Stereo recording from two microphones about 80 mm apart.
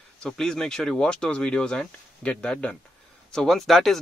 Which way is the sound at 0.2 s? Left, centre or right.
Centre.